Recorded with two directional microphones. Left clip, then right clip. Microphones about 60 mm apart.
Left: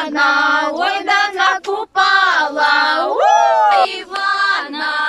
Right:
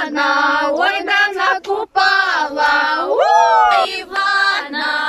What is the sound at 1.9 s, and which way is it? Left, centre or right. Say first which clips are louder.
Child singing: left 2 dB; right.